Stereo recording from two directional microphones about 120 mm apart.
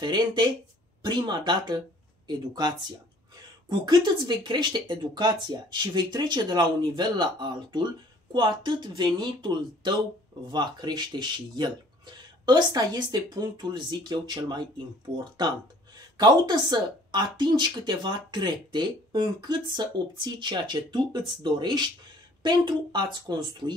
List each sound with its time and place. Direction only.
0.0 s speech: 35° right (ahead or behind)